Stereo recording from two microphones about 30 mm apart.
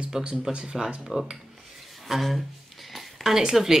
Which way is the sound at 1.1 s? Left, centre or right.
Centre.